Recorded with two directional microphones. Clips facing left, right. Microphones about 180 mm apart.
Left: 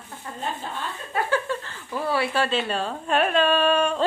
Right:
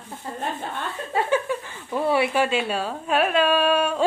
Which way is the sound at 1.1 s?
25° right (ahead or behind).